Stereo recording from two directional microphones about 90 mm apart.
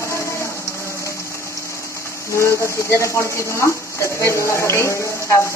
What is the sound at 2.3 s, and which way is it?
Speech, 30° left (ahead or behind).